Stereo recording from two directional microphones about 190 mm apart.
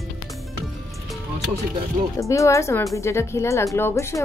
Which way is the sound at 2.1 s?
15° left (ahead or behind).